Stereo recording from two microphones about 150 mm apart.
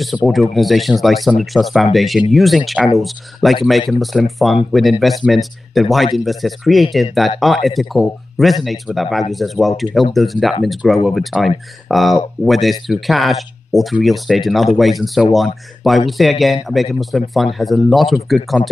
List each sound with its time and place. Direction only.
0.0 s speech: centre (ahead or behind)